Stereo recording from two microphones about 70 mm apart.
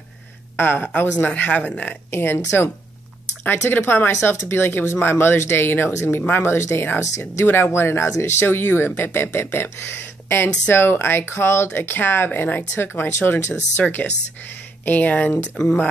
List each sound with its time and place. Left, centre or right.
0.6 s a woman's voice: left
7.4 s speech: left
15.5 s speech: centre